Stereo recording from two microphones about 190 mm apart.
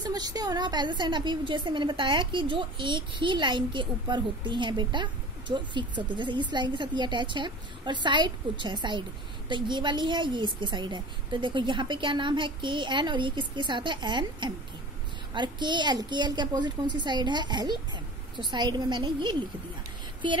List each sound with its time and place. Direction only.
0.1 s a woman's voice: 20° right (ahead or behind)